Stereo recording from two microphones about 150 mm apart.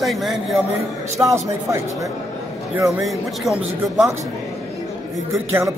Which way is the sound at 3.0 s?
Centre (ahead or behind).